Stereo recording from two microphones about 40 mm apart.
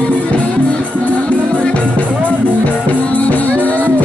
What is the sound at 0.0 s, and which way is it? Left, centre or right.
Music, left.